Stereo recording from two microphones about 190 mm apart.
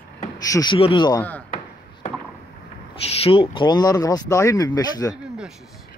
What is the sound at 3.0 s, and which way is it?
Speech, 30° left (ahead or behind).